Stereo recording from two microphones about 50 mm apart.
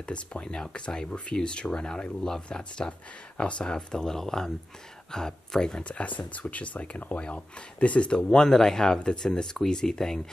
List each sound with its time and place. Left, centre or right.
0.1 s speech: left
5.9 s speech: left; by 10.2 s centre